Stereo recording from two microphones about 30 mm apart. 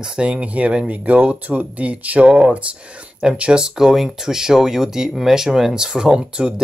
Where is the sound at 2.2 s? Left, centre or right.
Right.